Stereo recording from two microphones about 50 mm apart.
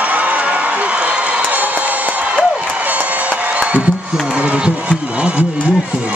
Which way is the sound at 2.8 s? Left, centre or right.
Right.